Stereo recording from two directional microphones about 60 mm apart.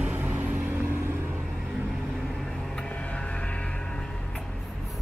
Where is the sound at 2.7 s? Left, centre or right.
Centre.